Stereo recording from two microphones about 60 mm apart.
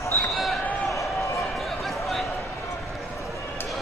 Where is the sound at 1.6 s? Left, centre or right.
Centre.